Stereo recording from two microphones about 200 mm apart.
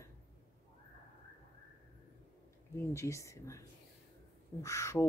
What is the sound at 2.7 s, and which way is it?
Speech, 15° left (ahead or behind).